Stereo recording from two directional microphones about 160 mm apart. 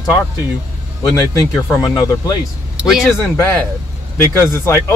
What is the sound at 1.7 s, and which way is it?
Speech, 25° left (ahead or behind).